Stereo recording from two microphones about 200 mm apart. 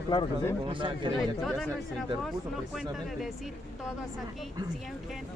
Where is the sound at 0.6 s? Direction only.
25° right (ahead or behind).